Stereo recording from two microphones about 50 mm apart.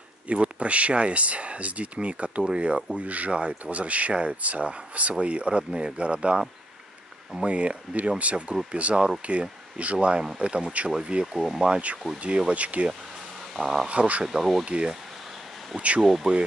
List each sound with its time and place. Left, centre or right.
0.3 s speech: right
7.4 s speech: right
11.3 s speech: centre
12.2 s speech: right
13.5 s speech: centre
13.8 s speech: right
14.2 s speech: centre
14.6 s speech: centre
16.0 s speech: centre